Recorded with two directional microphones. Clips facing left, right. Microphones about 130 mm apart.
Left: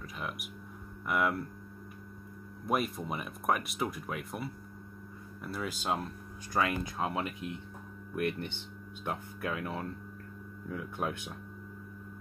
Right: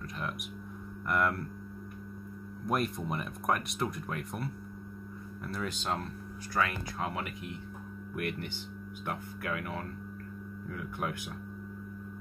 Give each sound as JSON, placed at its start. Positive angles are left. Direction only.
{"t": 0.2, "sound": "speech", "side_deg": 5}
{"t": 2.6, "sound": "speech", "side_deg": 5}
{"t": 6.5, "sound": "speech", "side_deg": 20}